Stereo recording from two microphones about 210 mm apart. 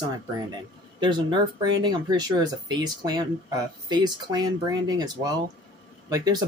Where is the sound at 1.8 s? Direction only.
20° right (ahead or behind).